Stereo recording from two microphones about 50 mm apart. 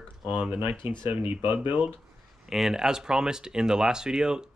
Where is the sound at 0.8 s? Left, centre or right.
Right.